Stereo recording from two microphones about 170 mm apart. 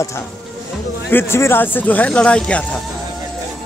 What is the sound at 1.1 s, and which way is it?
Speech, 15° left (ahead or behind).